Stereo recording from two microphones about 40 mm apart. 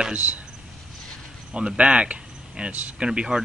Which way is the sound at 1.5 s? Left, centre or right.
Right.